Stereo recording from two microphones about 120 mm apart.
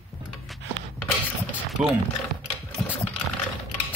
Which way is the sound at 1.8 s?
5° right (ahead or behind).